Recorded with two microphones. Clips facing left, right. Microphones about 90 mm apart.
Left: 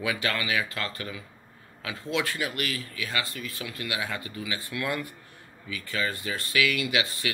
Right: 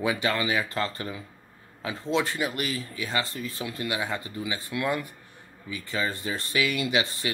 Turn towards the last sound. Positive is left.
turn(degrees=-25)  # may be behind; listen again after turning